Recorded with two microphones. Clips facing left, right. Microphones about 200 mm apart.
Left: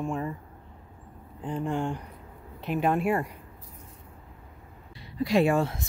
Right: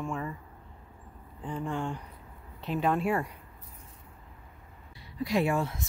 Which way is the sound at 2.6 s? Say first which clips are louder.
Left 2 dB; 10° left (ahead or behind).